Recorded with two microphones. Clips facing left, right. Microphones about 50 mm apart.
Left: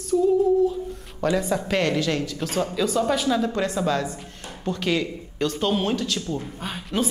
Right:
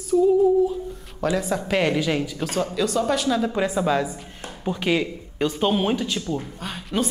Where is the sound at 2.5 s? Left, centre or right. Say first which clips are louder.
Left 1 dB; centre.